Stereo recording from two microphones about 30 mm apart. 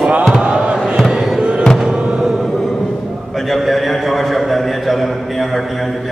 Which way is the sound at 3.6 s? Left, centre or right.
Centre.